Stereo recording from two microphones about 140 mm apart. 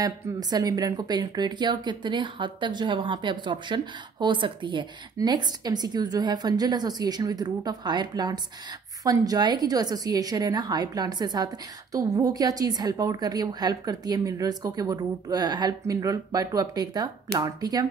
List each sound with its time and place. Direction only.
0.0 s a woman's voice: 30° right (ahead or behind)